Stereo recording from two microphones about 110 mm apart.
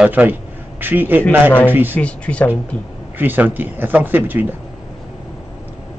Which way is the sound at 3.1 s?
15° right (ahead or behind).